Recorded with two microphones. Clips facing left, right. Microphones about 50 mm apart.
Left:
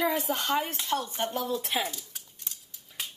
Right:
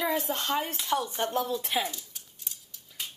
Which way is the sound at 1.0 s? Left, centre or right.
Left.